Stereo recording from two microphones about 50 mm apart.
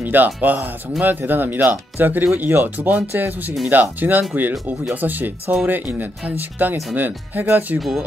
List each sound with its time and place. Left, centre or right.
0.0 s speech: right